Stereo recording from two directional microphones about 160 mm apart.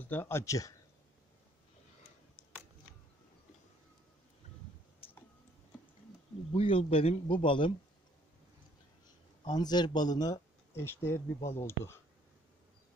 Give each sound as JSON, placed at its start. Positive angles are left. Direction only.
{"t": 0.0, "sound": "speech", "side_deg": 10}
{"t": 6.5, "sound": "a man's voice", "side_deg": 35}
{"t": 9.4, "sound": "speech", "side_deg": 25}